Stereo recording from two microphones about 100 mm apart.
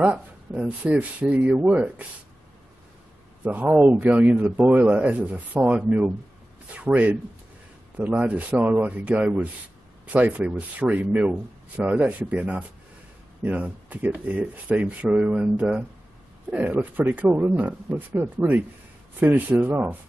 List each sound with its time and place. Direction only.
0.0 s speech: 15° right (ahead or behind)
3.4 s speech: 20° right (ahead or behind)